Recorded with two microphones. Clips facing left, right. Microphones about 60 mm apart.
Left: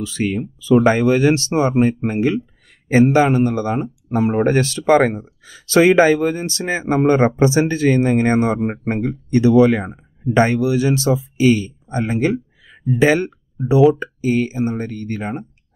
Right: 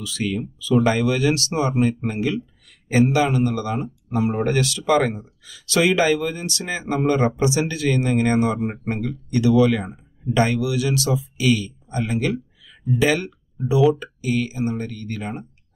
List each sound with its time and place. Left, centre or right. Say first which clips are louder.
0.0 s speech: left 4 dB; left